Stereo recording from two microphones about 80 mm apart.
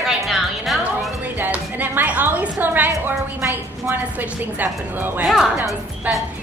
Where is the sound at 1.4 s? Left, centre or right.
Right.